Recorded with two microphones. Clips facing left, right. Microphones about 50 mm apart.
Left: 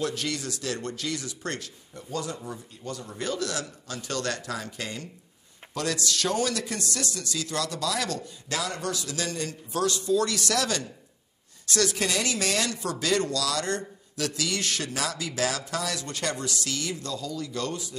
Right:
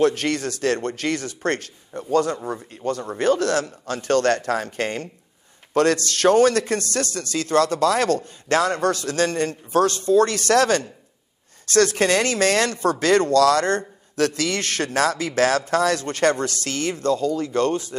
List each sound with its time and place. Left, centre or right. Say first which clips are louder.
0.0 s speech: right 10 dB; right